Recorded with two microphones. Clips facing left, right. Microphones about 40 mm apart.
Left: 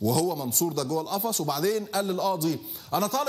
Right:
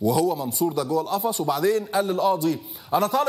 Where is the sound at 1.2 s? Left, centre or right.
Centre.